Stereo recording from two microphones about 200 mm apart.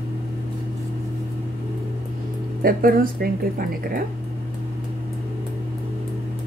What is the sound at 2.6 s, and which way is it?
Speech, 45° right (ahead or behind).